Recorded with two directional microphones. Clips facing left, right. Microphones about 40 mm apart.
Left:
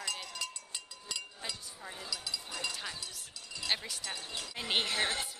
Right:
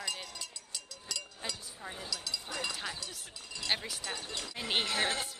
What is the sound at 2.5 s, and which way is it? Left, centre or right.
Speech, centre.